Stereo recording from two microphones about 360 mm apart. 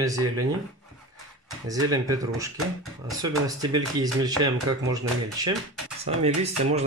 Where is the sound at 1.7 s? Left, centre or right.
Centre.